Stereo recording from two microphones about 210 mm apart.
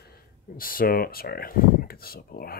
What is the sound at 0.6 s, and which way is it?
Speech, 45° left (ahead or behind).